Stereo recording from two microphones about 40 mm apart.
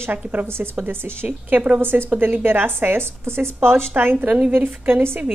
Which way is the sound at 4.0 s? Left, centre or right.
Right.